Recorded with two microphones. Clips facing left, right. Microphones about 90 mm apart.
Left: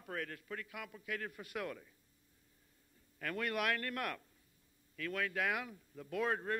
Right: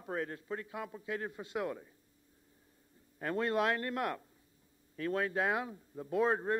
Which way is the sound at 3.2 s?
25° right (ahead or behind).